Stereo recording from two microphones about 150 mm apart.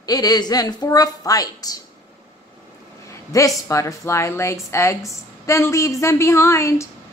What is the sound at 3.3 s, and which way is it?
Speech, 20° left (ahead or behind).